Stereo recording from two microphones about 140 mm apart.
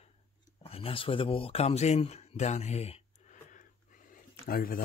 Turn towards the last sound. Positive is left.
turn(degrees=90)